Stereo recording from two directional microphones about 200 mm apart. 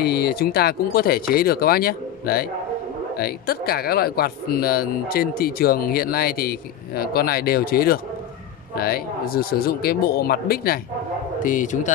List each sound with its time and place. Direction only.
0.0 s a man's voice: 50° left (ahead or behind)